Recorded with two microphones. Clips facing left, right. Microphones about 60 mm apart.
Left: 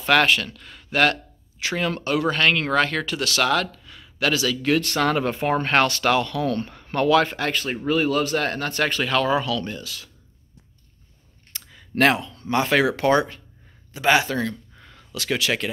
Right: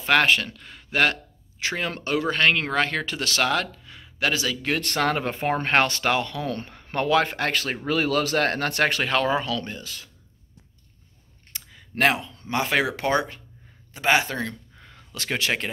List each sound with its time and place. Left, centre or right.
0.0 s speech: right
4.7 s speech: right
7.5 s speech: right
8.4 s speech: right
9.7 s speech: centre
11.7 s a sound: centre
12.2 s speech: centre
14.8 s a sound: centre
15.3 s speech: right